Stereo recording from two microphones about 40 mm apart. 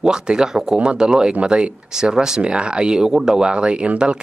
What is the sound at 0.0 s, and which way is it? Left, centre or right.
Speech, centre.